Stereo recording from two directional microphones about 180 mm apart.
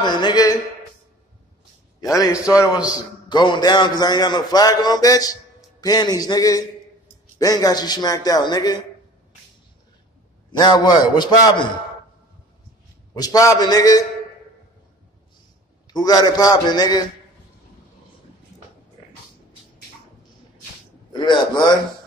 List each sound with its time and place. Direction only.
0.0 s a man's voice: 25° left (ahead or behind)
2.0 s a man's voice: 20° left (ahead or behind)
10.5 s a man's voice: 25° left (ahead or behind)
13.1 s a man's voice: 20° left (ahead or behind)
15.9 s a man's voice: 20° left (ahead or behind)
21.1 s a man's voice: 25° left (ahead or behind)